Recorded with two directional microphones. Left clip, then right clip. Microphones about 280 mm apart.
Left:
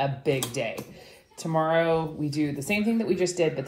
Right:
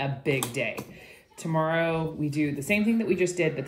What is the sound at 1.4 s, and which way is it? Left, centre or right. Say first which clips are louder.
Speech: left 2 dB; centre.